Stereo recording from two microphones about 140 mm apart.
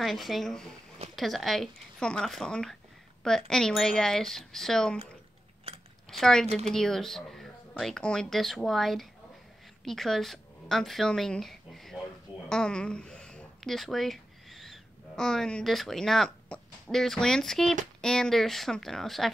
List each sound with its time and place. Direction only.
0.0 s speech: centre (ahead or behind)
6.0 s a woman's voice: 5° left (ahead or behind)